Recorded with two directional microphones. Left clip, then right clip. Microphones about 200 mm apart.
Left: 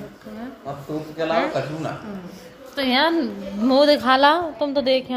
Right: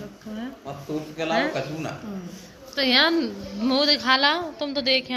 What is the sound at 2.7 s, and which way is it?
A woman's voice, 15° left (ahead or behind).